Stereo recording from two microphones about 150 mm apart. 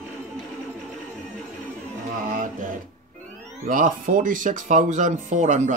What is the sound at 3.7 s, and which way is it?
Speech, 60° right (ahead or behind).